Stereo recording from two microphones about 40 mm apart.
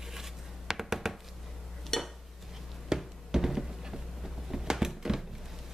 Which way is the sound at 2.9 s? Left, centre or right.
Centre.